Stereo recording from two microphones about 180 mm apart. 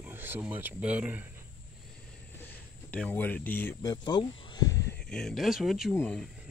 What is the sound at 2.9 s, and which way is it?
Speech, 10° left (ahead or behind).